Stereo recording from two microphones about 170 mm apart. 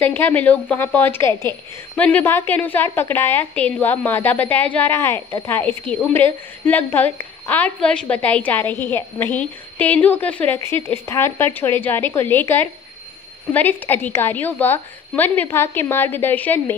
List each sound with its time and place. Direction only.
0.0 s a woman's voice: 10° left (ahead or behind)